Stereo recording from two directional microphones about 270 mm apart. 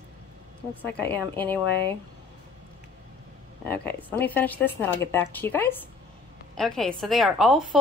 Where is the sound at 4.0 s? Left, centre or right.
Centre.